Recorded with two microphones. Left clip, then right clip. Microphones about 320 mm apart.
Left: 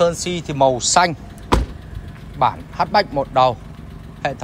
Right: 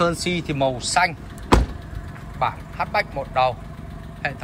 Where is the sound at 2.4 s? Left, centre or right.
Centre.